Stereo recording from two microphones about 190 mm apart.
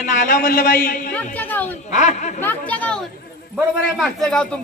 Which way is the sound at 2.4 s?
10° left (ahead or behind).